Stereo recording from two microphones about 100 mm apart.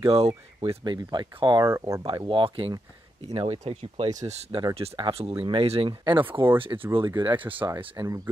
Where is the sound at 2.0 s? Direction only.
55° right (ahead or behind).